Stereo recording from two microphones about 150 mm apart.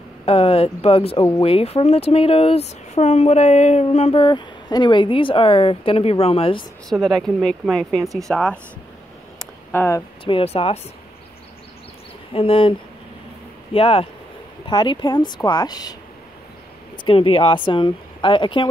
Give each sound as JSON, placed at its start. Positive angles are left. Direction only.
{"t": 0.2, "sound": "speech", "side_deg": 40}
{"t": 6.9, "sound": "speech", "side_deg": 0}
{"t": 8.0, "sound": "speech", "side_deg": -20}
{"t": 8.3, "sound": "speech", "side_deg": 5}
{"t": 9.4, "sound": "a sound", "side_deg": 15}
{"t": 10.2, "sound": "speech", "side_deg": 40}
{"t": 12.3, "sound": "speech", "side_deg": 40}
{"t": 13.7, "sound": "speech", "side_deg": 40}
{"t": 17.0, "sound": "speech", "side_deg": 35}